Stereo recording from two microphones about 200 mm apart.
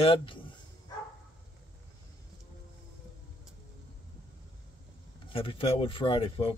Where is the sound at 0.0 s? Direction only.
25° left (ahead or behind).